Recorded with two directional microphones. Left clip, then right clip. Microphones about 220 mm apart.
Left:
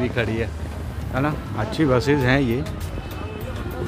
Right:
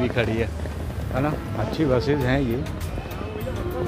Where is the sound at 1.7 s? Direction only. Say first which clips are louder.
Left 3 dB; 20° left (ahead or behind).